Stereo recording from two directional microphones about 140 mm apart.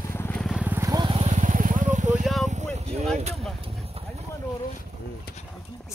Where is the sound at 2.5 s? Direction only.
55° right (ahead or behind).